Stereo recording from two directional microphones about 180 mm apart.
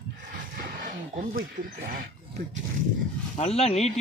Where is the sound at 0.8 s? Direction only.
50° right (ahead or behind).